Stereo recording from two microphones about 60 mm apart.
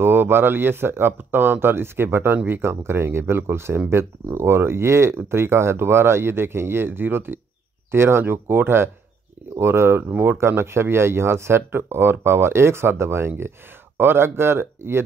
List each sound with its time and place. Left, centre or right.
0.0 s speech: right